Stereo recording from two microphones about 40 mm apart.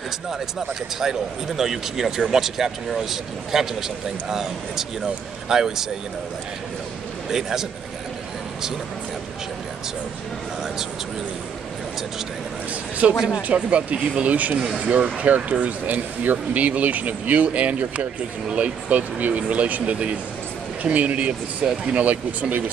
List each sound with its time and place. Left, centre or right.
0.3 s speech: centre
7.2 s speech: centre
13.0 s speech: right